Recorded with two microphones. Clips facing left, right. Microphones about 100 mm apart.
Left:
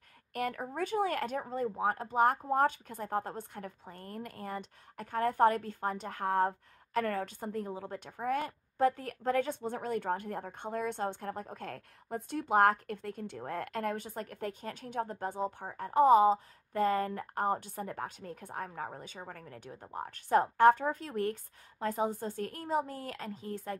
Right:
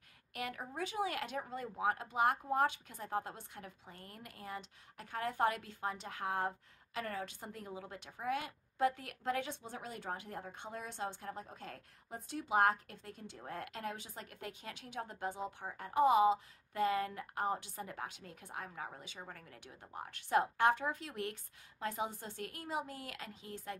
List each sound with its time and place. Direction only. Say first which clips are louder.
0.3 s a woman's voice: left 7 dB; 45° left (ahead or behind)
1.4 s a woman's voice: left 5 dB; 35° left (ahead or behind)